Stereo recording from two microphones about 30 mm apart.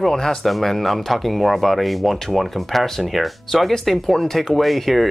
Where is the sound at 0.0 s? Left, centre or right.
Centre.